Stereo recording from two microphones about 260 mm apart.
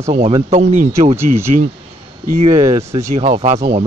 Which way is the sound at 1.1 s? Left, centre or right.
Centre.